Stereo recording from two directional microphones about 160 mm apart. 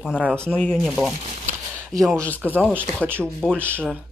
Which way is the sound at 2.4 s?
10° right (ahead or behind).